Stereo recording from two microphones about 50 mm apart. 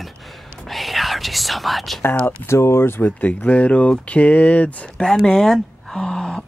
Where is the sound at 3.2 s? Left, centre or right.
Left.